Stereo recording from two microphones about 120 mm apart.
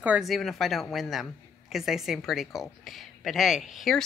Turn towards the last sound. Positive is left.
turn(degrees=0)  # may be behind; listen again after turning